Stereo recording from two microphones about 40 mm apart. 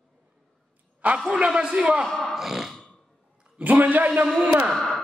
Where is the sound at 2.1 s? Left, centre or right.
Centre.